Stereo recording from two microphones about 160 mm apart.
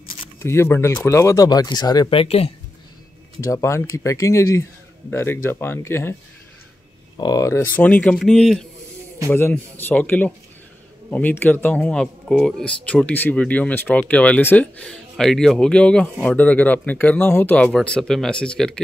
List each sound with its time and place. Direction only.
0.4 s speech: 15° left (ahead or behind); by 2.5 s 40° left (ahead or behind)
3.3 s speech: 20° left (ahead or behind)
7.2 s speech: 25° left (ahead or behind); by 18.8 s 5° left (ahead or behind)